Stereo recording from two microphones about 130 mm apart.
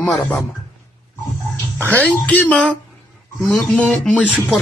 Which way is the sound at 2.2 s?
10° left (ahead or behind).